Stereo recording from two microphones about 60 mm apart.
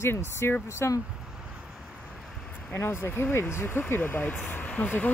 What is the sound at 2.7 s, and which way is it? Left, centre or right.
Speech, left.